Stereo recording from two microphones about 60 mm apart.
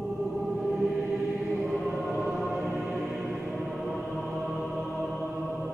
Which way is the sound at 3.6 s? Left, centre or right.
Centre.